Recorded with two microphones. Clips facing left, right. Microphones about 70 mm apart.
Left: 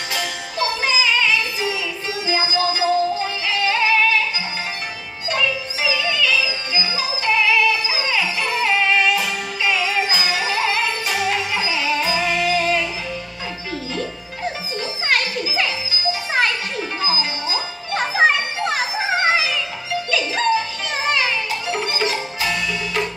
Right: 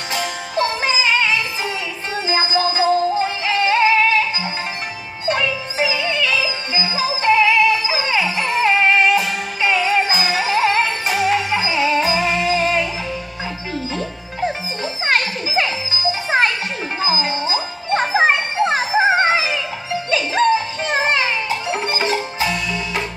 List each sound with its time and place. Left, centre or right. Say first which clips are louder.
0.1 s music: right 6 dB; right
5.3 s music: right 1 dB; right
15.0 s music: right 1 dB; right